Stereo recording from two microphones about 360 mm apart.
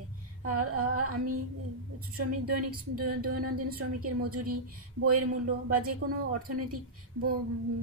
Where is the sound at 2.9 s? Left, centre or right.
Right.